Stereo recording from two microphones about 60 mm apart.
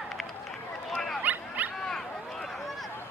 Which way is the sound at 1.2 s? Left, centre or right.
Right.